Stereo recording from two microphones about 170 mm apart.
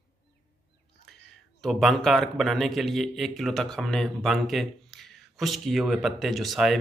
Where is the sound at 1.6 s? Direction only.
Centre (ahead or behind).